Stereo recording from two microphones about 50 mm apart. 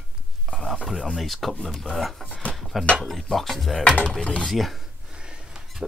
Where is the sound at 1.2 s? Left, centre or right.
Centre.